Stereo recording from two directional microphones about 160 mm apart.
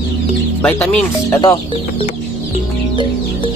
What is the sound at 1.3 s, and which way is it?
Speech, 25° left (ahead or behind).